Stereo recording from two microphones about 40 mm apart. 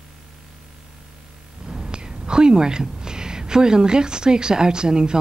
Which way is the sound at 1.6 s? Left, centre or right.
Centre.